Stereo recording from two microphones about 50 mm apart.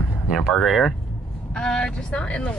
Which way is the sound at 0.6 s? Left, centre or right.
Centre.